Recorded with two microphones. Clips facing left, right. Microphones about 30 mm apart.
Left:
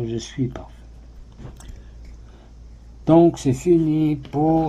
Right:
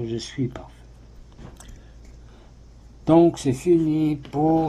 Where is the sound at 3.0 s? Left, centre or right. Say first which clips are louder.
Left 2 dB; centre.